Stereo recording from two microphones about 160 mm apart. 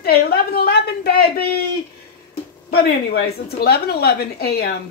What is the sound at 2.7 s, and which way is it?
A woman's voice, 80° left.